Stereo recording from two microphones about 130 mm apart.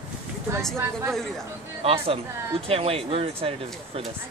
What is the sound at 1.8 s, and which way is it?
Speech, 45° right (ahead or behind).